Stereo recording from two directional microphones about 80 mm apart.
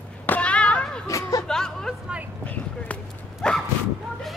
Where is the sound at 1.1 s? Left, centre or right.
Left.